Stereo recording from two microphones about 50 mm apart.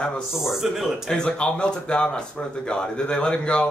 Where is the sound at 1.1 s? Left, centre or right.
Centre.